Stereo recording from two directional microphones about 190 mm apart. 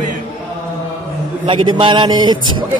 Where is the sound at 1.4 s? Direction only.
25° right (ahead or behind).